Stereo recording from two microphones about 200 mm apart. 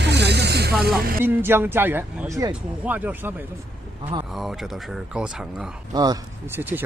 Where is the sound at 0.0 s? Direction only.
55° right (ahead or behind).